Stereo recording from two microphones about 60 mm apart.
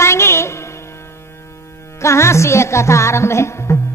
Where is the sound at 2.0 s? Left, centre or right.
Left.